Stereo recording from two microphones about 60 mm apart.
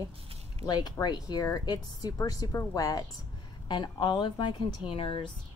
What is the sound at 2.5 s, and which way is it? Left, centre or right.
Speech, left.